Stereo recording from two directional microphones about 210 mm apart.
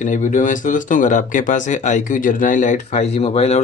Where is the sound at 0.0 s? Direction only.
35° left (ahead or behind).